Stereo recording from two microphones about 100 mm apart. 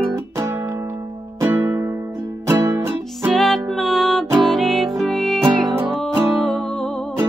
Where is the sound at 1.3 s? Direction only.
25° right (ahead or behind).